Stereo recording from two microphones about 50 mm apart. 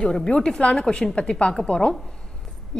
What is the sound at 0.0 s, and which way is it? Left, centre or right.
A woman's voice, centre.